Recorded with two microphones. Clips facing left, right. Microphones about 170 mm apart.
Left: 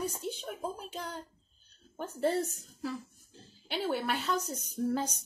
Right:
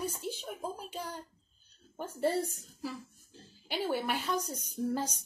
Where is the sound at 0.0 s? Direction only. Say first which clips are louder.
Left 1 dB; 5° right (ahead or behind).